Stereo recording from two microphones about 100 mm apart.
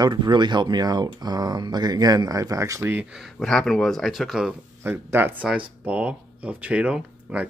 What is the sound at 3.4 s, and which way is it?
Speech, 5° left (ahead or behind).